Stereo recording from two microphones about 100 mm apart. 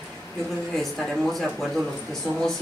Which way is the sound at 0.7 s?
5° left (ahead or behind).